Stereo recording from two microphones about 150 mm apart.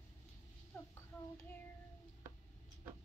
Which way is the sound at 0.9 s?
20° left (ahead or behind).